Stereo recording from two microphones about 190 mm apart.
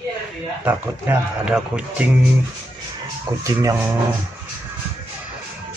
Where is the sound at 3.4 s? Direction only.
15° right (ahead or behind).